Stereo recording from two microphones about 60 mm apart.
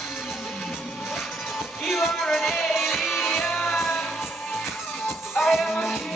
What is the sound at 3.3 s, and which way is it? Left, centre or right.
Music, left.